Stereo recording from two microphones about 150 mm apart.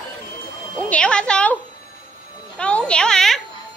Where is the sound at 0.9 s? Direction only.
5° left (ahead or behind).